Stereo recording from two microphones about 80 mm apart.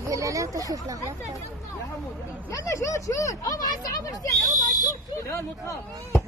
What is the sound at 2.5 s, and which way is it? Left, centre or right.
Speech, left.